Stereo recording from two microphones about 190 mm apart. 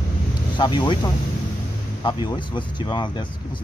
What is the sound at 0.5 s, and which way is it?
Speech, 25° left (ahead or behind).